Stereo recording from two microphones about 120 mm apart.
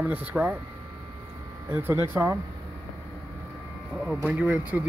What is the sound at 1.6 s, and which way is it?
Speech, 15° right (ahead or behind).